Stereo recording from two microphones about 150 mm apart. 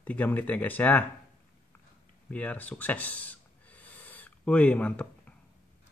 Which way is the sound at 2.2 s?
10° left (ahead or behind).